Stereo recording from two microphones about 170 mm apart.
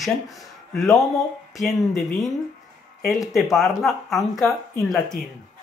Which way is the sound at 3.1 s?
Centre (ahead or behind).